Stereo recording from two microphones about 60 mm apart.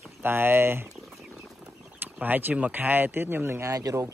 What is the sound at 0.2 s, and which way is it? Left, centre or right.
Speech, right.